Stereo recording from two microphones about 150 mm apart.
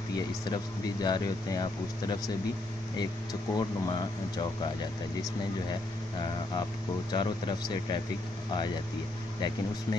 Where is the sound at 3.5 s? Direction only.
25° left (ahead or behind).